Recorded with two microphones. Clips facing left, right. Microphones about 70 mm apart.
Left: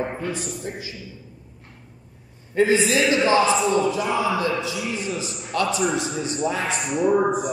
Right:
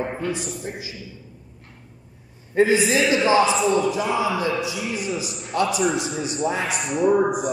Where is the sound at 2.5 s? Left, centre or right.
Centre.